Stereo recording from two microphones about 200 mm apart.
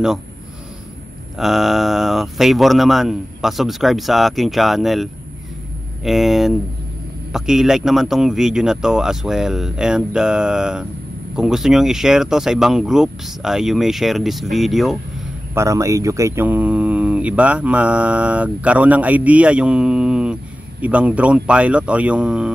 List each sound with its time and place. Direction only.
1.4 s speech: centre (ahead or behind)
15.5 s speech: 15° right (ahead or behind)